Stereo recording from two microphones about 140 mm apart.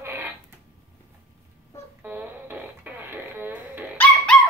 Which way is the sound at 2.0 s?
15° right (ahead or behind).